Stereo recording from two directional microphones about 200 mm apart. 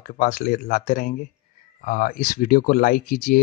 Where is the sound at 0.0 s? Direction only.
40° left (ahead or behind).